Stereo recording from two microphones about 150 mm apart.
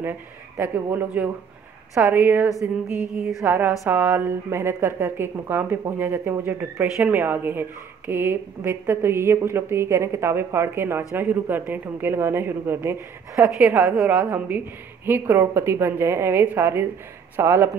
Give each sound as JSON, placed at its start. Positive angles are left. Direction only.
{"t": 0.6, "sound": "speech", "side_deg": -15}